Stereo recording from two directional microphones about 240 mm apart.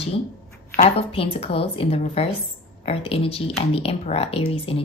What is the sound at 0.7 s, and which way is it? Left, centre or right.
A woman's voice, left.